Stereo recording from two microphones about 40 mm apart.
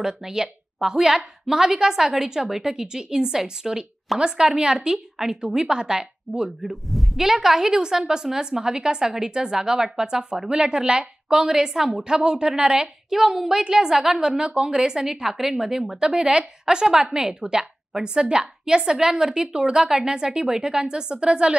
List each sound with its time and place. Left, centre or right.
0.0 s a woman's voice: centre
4.1 s speech: centre
4.6 s a woman's voice: centre
6.7 s a woman's voice: centre; by 21.5 s right